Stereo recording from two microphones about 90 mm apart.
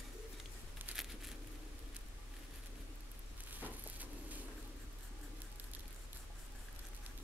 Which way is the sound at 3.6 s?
20° right (ahead or behind).